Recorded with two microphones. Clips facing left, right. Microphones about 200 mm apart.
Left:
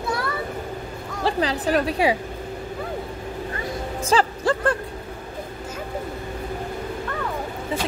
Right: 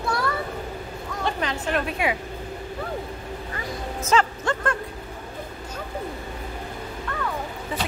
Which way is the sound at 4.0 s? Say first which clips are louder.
Left 1 dB; 30° left (ahead or behind).